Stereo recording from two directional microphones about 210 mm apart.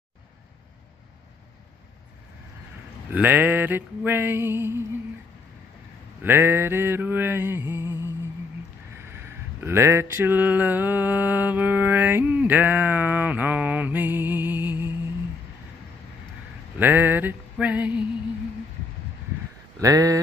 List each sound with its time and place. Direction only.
3.1 s mantra: 10° right (ahead or behind)
6.2 s mantra: 10° right (ahead or behind)
9.6 s mantra: 10° right (ahead or behind)
16.7 s a sound: 10° right (ahead or behind)
19.8 s mantra: 15° right (ahead or behind)